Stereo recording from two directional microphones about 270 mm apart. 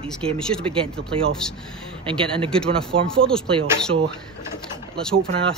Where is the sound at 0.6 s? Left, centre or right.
Centre.